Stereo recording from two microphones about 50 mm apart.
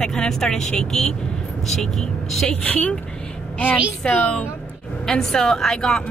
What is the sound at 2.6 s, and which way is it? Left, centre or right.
Speech, left.